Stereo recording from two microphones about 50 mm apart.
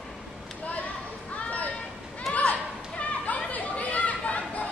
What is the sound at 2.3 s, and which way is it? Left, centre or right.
Chatter, left.